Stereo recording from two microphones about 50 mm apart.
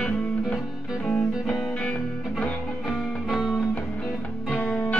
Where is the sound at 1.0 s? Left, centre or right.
Centre.